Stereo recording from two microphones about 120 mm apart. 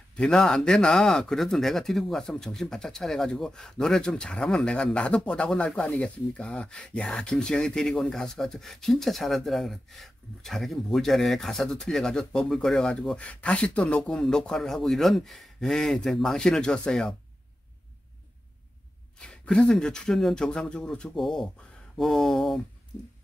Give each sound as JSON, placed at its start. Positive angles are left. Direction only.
{"t": 0.1, "sound": "speech", "side_deg": 5}
{"t": 19.1, "sound": "speech", "side_deg": 5}